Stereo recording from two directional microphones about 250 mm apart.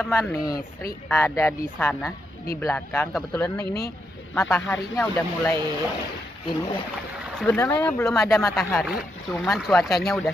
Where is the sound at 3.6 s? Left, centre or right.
Left.